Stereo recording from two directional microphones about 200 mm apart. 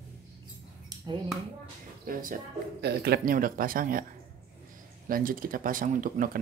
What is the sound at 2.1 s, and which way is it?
Speech, 45° right (ahead or behind).